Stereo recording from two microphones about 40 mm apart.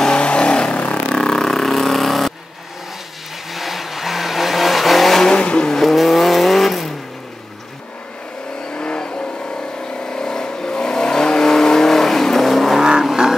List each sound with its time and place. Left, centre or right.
0.0 s vehicle: left; by 2.3 s centre
3.5 s vehicle: centre
5.3 s vehicle: left
5.7 s vehicle: centre
8.7 s vehicle: left; by 12.8 s centre
13.0 s vehicle: centre